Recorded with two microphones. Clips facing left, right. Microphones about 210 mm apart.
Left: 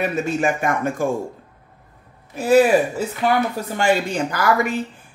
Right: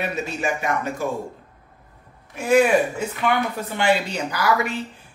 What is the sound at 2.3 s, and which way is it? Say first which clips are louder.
A man's voice: left 3 dB; 35° left (ahead or behind).